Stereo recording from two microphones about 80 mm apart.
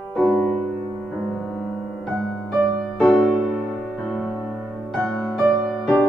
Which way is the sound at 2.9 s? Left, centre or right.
Centre.